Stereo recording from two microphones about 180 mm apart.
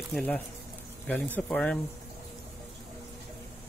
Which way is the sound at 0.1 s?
5° left (ahead or behind).